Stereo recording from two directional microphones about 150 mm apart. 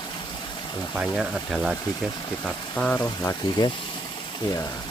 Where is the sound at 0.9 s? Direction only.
5° right (ahead or behind).